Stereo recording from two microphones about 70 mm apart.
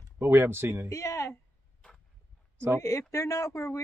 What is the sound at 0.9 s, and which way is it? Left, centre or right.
Speech, left.